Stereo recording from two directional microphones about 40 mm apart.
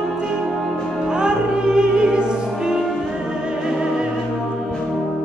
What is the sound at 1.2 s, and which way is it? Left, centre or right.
Music, right.